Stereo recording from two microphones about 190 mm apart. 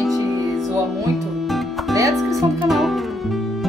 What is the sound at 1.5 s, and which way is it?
Music, centre (ahead or behind).